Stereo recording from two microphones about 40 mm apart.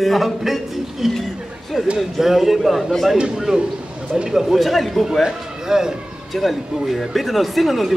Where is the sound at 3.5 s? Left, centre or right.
Centre.